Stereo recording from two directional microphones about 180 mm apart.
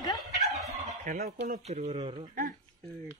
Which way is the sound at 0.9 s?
50° right (ahead or behind).